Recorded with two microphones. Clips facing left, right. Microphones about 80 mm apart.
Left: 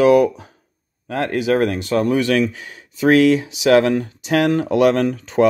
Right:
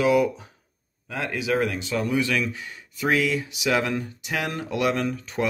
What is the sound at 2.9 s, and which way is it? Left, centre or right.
Speech, left.